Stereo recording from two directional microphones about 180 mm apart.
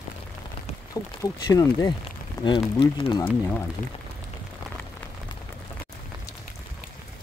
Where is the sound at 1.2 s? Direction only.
20° left (ahead or behind).